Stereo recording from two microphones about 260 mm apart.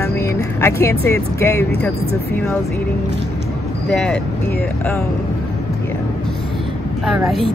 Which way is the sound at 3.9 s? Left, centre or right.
Centre.